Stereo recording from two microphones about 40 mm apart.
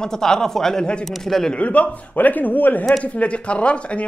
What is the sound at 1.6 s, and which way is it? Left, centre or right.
A man's voice, left.